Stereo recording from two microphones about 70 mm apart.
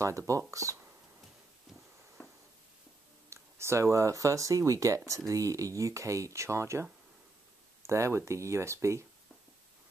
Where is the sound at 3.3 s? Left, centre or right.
Right.